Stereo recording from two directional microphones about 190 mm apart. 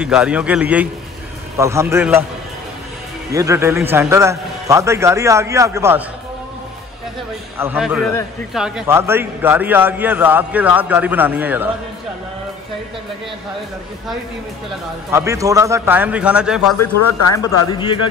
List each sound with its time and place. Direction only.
0.0 s a man's voice: 5° right (ahead or behind)
3.3 s a man's voice: 15° right (ahead or behind)
7.5 s a man's voice: 10° right (ahead or behind)
7.8 s a man's voice: centre (ahead or behind)
15.0 s a man's voice: 15° right (ahead or behind)
17.3 s speech: 20° left (ahead or behind)